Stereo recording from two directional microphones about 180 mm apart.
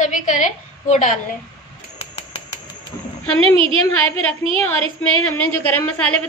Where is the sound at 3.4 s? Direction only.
30° right (ahead or behind).